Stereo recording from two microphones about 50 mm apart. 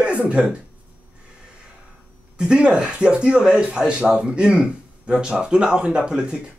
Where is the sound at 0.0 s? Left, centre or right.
Right.